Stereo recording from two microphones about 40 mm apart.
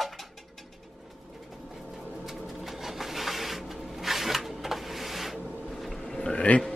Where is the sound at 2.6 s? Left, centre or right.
Centre.